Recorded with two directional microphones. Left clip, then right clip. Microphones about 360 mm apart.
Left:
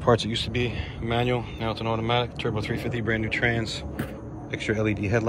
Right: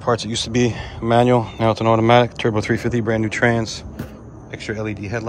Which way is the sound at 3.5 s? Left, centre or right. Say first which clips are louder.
Right 5 dB; centre.